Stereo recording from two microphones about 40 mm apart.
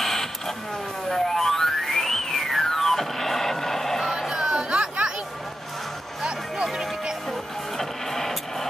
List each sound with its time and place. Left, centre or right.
0.0 s a sound: centre
1.0 s music: centre
4.3 s chatter: centre
7.2 s music: centre